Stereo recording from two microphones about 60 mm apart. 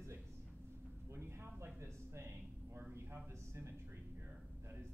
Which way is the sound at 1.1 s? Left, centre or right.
Right.